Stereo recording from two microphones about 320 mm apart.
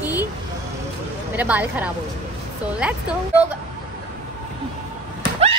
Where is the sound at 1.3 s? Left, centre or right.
Centre.